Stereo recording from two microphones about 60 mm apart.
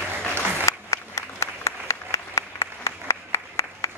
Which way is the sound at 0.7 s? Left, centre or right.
Left.